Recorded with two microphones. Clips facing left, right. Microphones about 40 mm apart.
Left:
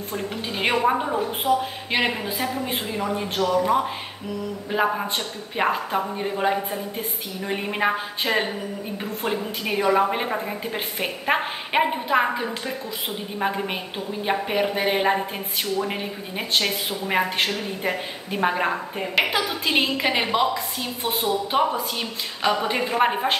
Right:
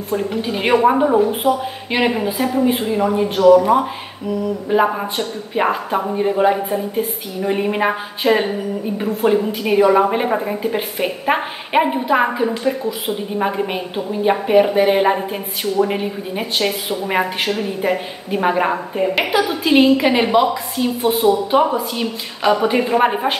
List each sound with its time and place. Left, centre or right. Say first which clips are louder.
0.3 s a woman's voice: right 5 dB; centre
0.7 s a woman's voice: right 9 dB; centre
1.4 s a woman's voice: right 4 dB; centre
4.6 s a woman's voice: right 5 dB; centre